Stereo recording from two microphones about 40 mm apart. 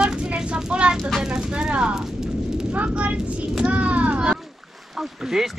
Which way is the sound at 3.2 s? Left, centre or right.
Right.